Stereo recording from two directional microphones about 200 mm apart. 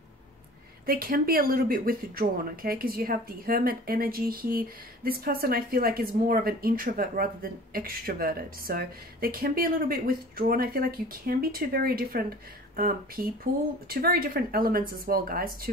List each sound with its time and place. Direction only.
0.8 s speech: 45° right (ahead or behind)